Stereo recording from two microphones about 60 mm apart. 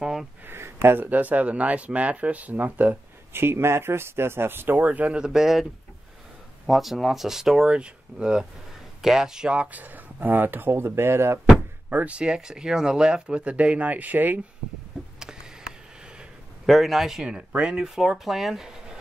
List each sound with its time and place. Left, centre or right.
0.0 s a sound: centre
0.5 s a sound: right
1.1 s speech: right
3.3 s speech: right
5.2 s speech: centre; by 11.3 s right
11.9 s speech: right
15.1 s a sound: centre
16.6 s a man's voice: centre
17.2 s speech: centre